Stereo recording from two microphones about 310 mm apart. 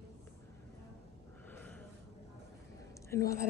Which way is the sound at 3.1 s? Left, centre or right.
Centre.